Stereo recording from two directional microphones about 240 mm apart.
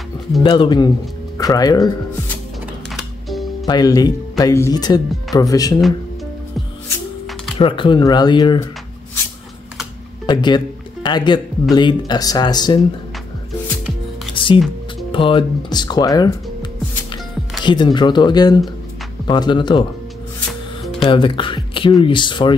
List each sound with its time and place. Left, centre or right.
0.4 s speech: centre
3.0 s music: centre
3.6 s speech: centre
7.5 s speech: left
10.2 s speech: centre
14.3 s music: left
15.0 s speech: left
17.6 s speech: centre
21.0 s speech: left